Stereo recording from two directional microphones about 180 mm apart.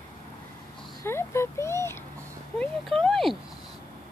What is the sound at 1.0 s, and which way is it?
Speech, 15° left (ahead or behind).